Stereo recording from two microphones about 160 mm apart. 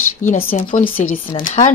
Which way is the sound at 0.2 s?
60° left (ahead or behind).